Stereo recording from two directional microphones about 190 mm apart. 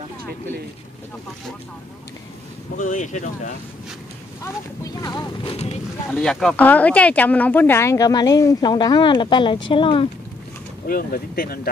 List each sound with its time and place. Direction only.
2.8 s speech: 40° left (ahead or behind)
4.8 s speech: 20° left (ahead or behind)
5.5 s speech: 35° left (ahead or behind)
6.1 s speech: 5° left (ahead or behind); by 10.0 s 25° left (ahead or behind)
10.9 s speech: 50° left (ahead or behind)